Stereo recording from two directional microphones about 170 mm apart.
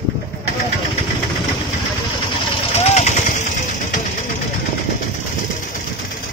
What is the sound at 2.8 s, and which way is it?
Machine gun, 40° left (ahead or behind).